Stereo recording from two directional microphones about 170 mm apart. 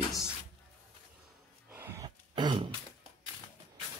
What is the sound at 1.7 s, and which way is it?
Throat clearing, 15° right (ahead or behind).